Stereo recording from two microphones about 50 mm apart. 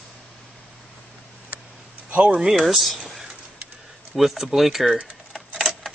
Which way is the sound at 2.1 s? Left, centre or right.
Right.